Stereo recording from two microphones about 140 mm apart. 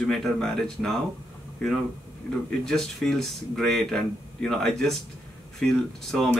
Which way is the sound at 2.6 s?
5° left (ahead or behind).